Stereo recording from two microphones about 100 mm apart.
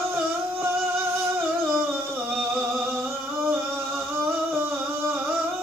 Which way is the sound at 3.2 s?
20° right (ahead or behind).